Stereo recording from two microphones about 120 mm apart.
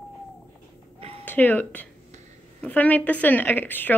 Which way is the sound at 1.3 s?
15° left (ahead or behind).